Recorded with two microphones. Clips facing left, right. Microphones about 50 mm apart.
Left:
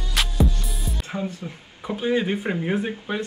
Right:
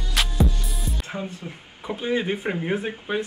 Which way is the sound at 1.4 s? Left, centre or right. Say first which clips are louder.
Left 1 dB; centre.